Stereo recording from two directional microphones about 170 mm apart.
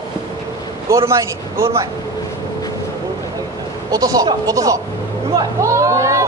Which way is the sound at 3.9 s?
20° right (ahead or behind).